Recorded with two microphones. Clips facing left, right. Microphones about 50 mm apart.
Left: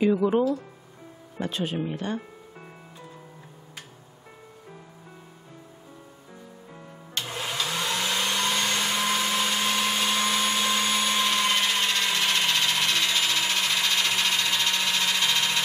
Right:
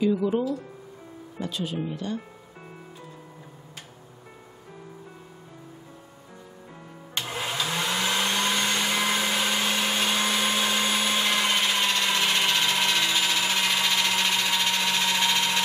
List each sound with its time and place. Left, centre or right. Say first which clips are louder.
0.0 s speech: left 2 dB; left
7.2 s vacuum cleaner: right 1 dB; centre
9.0 s blender: even; centre
9.6 s vacuum cleaner: even; centre
11.8 s sewing machine: right 1 dB; centre
12.3 s a sound: right 1 dB; centre
14.0 s engine: right 1 dB; centre